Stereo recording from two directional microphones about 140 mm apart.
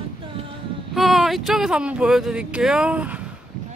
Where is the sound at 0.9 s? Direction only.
Centre (ahead or behind).